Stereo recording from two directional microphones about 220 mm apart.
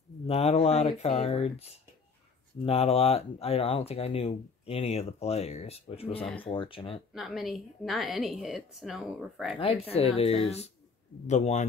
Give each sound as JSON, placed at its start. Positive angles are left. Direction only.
{"t": 0.3, "sound": "speech", "side_deg": 30}
{"t": 7.2, "sound": "a woman's voice", "side_deg": 0}
{"t": 9.6, "sound": "a man's voice", "side_deg": 25}